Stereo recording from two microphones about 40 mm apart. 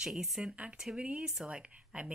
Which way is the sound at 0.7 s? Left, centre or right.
Right.